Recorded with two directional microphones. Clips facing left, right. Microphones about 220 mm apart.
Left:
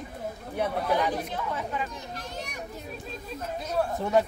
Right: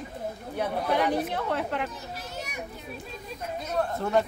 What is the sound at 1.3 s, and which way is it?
Speech, 65° right (ahead or behind).